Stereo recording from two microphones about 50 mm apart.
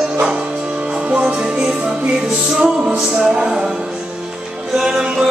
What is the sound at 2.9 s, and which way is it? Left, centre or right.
Music, centre.